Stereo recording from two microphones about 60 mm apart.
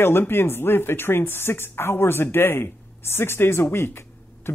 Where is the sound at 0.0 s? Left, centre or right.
Left.